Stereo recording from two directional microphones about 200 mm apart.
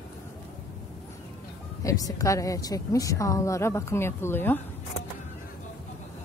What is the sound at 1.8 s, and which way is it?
A woman's voice, 15° left (ahead or behind).